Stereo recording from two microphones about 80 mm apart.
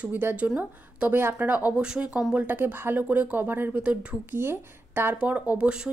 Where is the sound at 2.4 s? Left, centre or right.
Right.